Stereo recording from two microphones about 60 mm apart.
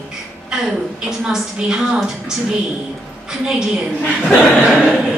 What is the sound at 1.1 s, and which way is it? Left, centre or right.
A woman's voice, centre.